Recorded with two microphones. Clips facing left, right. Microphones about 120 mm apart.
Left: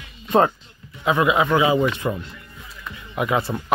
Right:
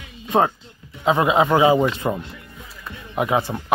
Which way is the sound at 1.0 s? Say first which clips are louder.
Right 2 dB; 30° right (ahead or behind).